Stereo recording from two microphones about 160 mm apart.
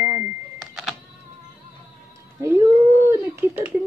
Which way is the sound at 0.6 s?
5° right (ahead or behind).